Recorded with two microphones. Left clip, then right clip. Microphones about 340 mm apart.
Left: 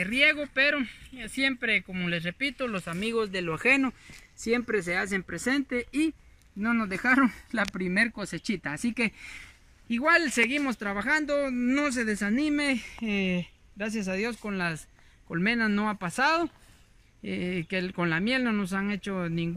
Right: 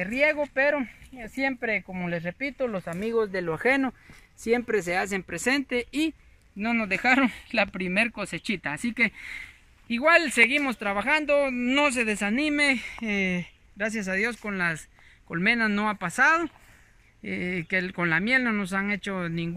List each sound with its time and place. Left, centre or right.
0.0 s speech: centre
7.5 s speech: centre